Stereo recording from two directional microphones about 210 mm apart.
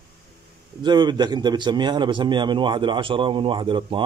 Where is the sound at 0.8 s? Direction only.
20° right (ahead or behind).